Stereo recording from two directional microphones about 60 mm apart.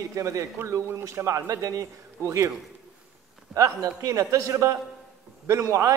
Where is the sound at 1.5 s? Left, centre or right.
Right.